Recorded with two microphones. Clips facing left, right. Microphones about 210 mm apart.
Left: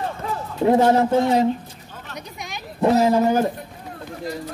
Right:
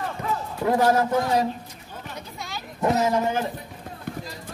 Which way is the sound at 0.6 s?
25° left (ahead or behind).